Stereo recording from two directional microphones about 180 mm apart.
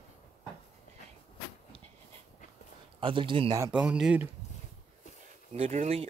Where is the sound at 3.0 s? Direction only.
30° right (ahead or behind).